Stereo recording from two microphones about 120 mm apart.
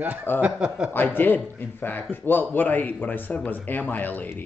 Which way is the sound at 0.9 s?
15° left (ahead or behind).